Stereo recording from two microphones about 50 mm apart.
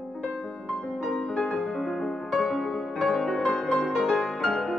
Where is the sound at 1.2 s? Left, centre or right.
Centre.